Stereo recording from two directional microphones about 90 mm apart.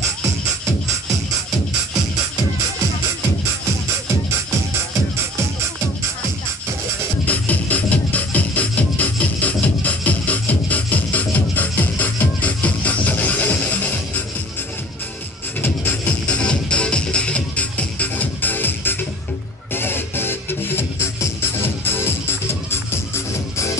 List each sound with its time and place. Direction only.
7.2 s music: 20° left (ahead or behind)
15.6 s music: 20° left (ahead or behind)